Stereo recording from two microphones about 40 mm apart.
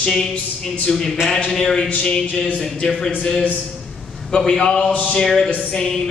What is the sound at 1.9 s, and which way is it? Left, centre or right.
Speech, left.